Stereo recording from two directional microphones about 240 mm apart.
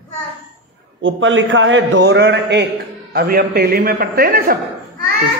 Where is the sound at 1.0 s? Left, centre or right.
Right.